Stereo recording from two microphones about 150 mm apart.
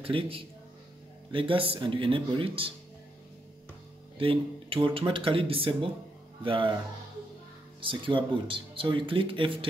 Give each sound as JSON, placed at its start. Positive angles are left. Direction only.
{"t": 0.0, "sound": "speech", "side_deg": -35}
{"t": 4.2, "sound": "speech", "side_deg": -40}
{"t": 7.8, "sound": "speech", "side_deg": -35}